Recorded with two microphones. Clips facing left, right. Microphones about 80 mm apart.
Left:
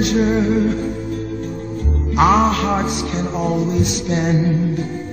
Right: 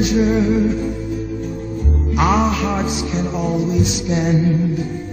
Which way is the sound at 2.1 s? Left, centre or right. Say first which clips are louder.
Left 3 dB; centre.